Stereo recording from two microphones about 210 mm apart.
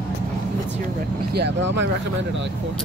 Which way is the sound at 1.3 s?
55° right (ahead or behind).